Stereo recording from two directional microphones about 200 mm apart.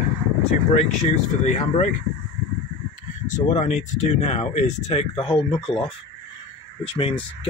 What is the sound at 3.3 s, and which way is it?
Speech, 35° left (ahead or behind).